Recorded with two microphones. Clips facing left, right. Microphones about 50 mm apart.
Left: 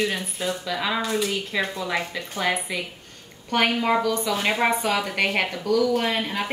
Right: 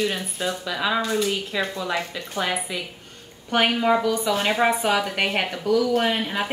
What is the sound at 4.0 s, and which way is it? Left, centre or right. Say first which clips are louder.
Speech: right 1 dB; centre.